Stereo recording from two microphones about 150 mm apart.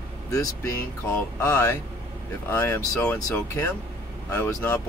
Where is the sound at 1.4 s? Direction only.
15° left (ahead or behind).